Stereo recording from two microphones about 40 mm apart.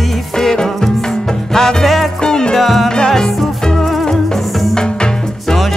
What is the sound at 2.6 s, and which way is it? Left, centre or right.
Music, centre.